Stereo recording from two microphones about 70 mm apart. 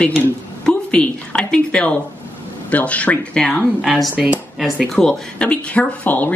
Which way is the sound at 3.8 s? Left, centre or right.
Centre.